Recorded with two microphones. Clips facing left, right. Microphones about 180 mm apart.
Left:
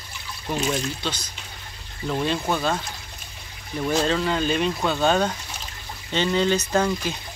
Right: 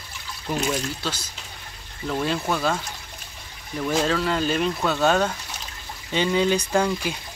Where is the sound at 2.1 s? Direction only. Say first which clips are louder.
Left 1 dB; 5° left (ahead or behind).